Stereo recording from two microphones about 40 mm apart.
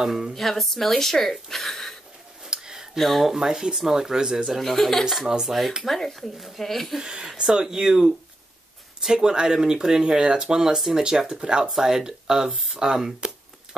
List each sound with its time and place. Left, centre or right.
0.3 s speech: centre
2.4 s a sound: centre
3.0 s speech: centre
3.3 s speech: centre
4.6 s speech: centre
5.4 s speech: centre
5.9 s speech: centre
7.0 s speech: centre